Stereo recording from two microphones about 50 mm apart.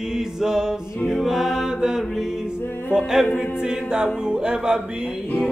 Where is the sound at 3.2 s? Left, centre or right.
Centre.